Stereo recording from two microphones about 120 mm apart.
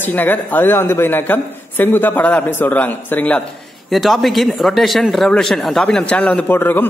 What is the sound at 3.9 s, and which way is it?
Speech, centre (ahead or behind).